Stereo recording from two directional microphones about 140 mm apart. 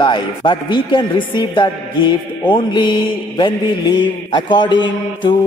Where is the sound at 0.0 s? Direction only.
35° left (ahead or behind).